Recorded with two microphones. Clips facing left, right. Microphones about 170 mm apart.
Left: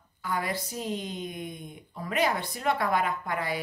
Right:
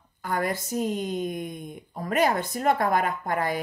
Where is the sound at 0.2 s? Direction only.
50° right (ahead or behind).